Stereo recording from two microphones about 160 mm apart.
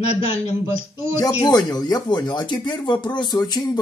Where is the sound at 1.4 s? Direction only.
25° left (ahead or behind).